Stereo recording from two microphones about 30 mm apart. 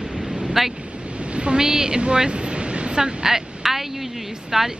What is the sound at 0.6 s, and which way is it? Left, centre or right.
Speech, centre.